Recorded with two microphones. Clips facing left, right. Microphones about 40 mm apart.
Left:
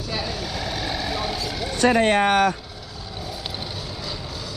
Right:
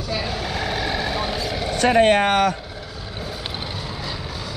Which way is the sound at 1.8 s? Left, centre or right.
Right.